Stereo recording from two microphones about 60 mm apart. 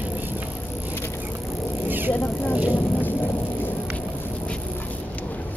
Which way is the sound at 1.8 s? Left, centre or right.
Right.